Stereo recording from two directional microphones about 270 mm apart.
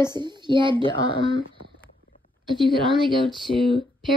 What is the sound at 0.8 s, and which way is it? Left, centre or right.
Speech, centre.